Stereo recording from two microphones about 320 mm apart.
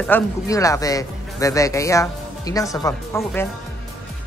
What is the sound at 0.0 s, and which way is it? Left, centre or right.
A man's voice, centre.